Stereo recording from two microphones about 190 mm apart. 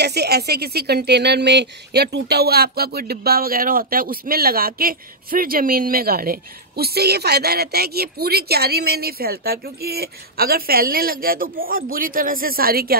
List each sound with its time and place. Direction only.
0.0 s speech: 60° right (ahead or behind)